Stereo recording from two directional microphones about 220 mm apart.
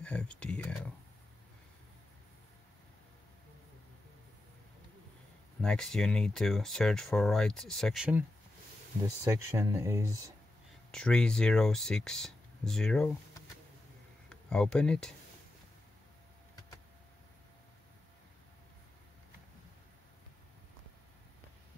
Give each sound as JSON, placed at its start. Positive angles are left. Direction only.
{"t": 0.0, "sound": "speech", "side_deg": 5}
{"t": 5.6, "sound": "speech", "side_deg": 5}
{"t": 10.9, "sound": "speech", "side_deg": 5}
{"t": 14.3, "sound": "speech", "side_deg": 5}